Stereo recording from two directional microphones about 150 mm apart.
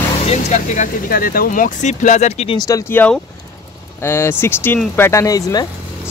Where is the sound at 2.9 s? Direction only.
10° left (ahead or behind).